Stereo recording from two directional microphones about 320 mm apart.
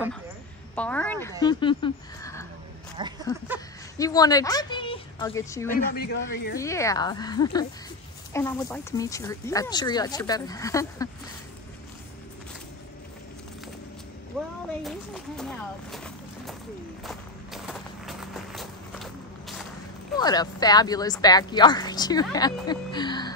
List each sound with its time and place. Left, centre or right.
0.7 s speech: centre
3.0 s speech: centre
4.0 s speech: centre
5.7 s a man's voice: left
6.6 s speech: centre
14.3 s a sound: centre
14.8 s speech: centre
17.0 s walk: centre
20.2 s speech: centre